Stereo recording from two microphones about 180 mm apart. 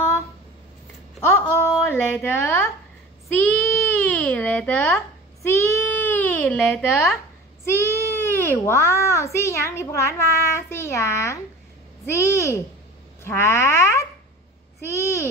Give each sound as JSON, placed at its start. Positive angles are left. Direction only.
{"t": 1.2, "sound": "a sound", "side_deg": 15}
{"t": 1.9, "sound": "a woman's voice", "side_deg": 15}
{"t": 3.3, "sound": "babbling", "side_deg": 5}
{"t": 7.6, "sound": "a child's voice", "side_deg": 15}